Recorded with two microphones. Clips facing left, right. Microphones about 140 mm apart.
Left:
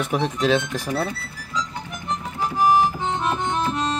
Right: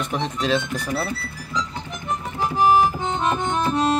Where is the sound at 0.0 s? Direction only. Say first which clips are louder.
Left 3 dB; 5° left (ahead or behind).